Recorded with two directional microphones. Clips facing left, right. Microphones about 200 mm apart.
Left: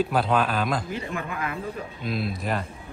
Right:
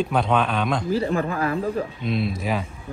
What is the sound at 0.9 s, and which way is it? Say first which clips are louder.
Speech: right 9 dB; 35° right (ahead or behind).